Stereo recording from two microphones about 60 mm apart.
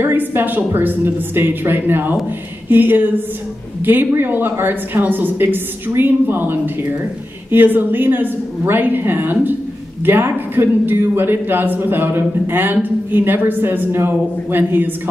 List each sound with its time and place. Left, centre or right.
0.0 s a woman's voice: right